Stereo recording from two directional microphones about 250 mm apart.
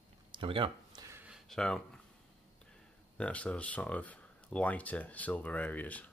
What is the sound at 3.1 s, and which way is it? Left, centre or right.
Speech, centre.